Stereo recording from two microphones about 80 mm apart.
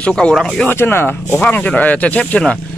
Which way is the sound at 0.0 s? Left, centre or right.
Centre.